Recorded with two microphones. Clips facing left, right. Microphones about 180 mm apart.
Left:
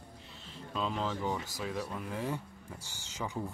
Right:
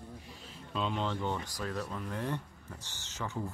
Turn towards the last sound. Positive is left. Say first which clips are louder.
# even
turn(degrees=10)  # may be behind; listen again after turning